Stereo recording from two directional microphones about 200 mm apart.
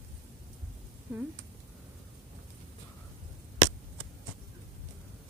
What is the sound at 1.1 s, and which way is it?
Speech, 10° right (ahead or behind).